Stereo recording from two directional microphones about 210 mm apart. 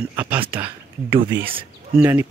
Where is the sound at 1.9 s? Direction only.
10° right (ahead or behind).